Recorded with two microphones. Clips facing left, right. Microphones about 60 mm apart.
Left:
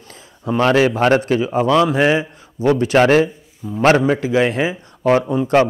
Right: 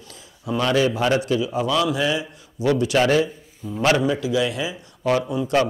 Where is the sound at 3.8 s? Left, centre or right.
Left.